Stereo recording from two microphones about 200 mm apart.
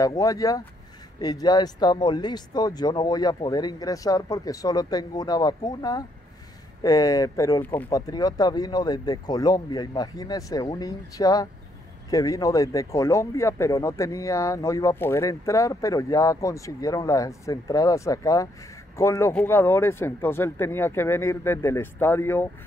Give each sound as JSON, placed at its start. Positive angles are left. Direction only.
{"t": 0.0, "sound": "speech", "side_deg": 15}